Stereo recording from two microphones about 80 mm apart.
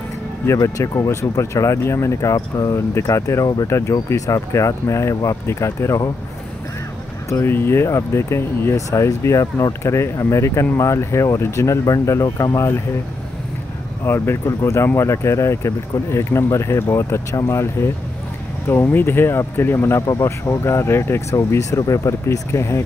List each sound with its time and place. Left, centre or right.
0.5 s speech: left
3.6 s speech: left
7.2 s speech: left
14.0 s speech: left